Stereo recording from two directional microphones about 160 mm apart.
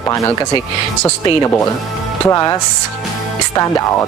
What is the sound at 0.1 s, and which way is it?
Speech, 20° left (ahead or behind).